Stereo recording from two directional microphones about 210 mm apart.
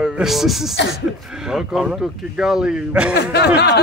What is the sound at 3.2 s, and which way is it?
Speech, 55° left (ahead or behind).